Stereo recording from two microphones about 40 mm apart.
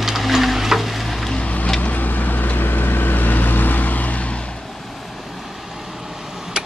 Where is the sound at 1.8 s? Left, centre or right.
Left.